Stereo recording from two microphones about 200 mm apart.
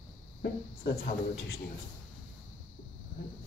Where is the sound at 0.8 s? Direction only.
50° left (ahead or behind).